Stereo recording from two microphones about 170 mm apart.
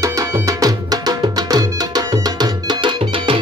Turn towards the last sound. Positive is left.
turn(degrees=-25)  # may be behind; listen again after turning